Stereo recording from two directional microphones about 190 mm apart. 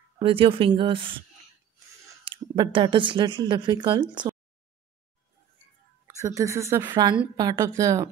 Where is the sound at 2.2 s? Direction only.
25° right (ahead or behind).